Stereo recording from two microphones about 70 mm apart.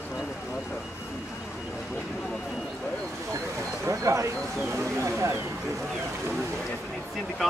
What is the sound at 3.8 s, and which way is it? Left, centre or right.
Speech, right.